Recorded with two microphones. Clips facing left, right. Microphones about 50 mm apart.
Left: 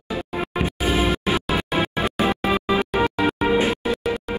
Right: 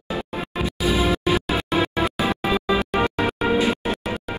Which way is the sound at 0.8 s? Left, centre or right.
Left.